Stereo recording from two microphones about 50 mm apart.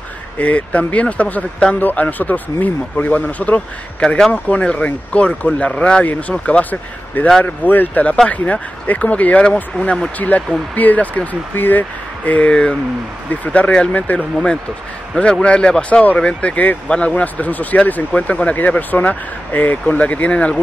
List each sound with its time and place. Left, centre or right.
0.4 s speech: left
6.6 s speech: left
12.3 s speech: left